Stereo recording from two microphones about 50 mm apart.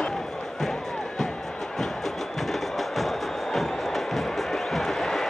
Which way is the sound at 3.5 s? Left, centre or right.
Centre.